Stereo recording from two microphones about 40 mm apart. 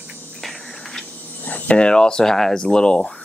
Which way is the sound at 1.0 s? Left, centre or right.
Left.